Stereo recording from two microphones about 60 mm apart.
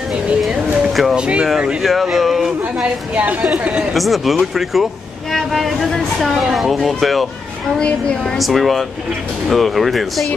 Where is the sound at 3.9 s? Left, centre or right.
Centre.